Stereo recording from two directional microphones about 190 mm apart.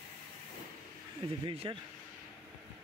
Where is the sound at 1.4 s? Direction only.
25° right (ahead or behind).